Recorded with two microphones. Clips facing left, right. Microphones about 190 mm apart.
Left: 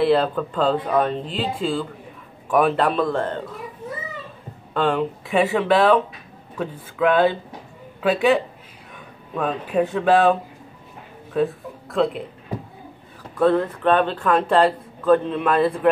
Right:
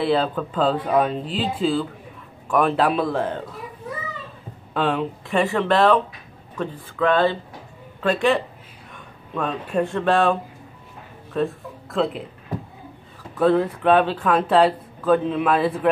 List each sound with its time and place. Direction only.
0.0 s speech: centre (ahead or behind)
4.7 s speech: centre (ahead or behind)
11.3 s speech: centre (ahead or behind)
13.4 s speech: 5° right (ahead or behind)